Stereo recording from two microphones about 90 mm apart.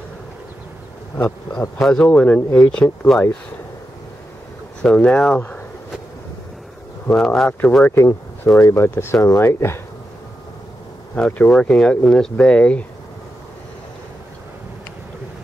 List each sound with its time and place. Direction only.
1.1 s speech: 20° left (ahead or behind)
1.8 s speech: 5° left (ahead or behind)
2.0 s speech: 15° left (ahead or behind)
4.8 s speech: 10° left (ahead or behind)
7.1 s speech: 10° left (ahead or behind)
7.9 s speech: 30° left (ahead or behind)
11.1 s speech: 15° left (ahead or behind)